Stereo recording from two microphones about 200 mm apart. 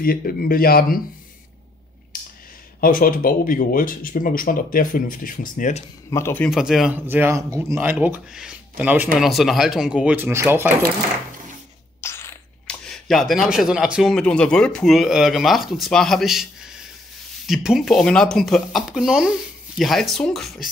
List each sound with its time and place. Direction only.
0.0 s speech: 45° left (ahead or behind)
2.1 s a sound: 45° left (ahead or behind)
2.8 s speech: 45° left (ahead or behind)
6.0 s a man's voice: 15° left (ahead or behind)
6.5 s speech: centre (ahead or behind)
12.0 s speech: 15° left (ahead or behind)